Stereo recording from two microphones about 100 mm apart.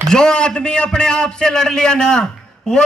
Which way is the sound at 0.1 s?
10° left (ahead or behind).